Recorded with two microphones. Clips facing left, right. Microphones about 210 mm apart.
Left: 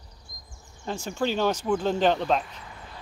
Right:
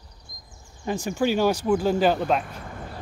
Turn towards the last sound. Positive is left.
turn(degrees=-50)  # may be behind; listen again after turning